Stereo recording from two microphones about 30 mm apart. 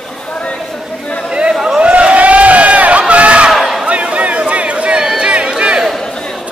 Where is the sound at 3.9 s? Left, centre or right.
Right.